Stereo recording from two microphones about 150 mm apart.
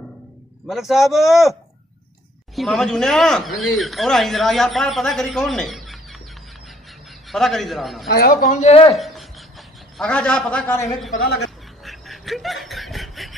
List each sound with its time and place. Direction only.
0.7 s speech: centre (ahead or behind)
7.2 s speech: centre (ahead or behind)
8.1 s a man's voice: 80° left; by 8.9 s 45° left (ahead or behind)
8.9 s a sound: centre (ahead or behind)
11.1 s speech: 90° left
11.8 s snicker: centre (ahead or behind)